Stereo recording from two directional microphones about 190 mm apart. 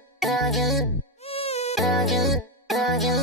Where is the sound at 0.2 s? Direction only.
Centre (ahead or behind).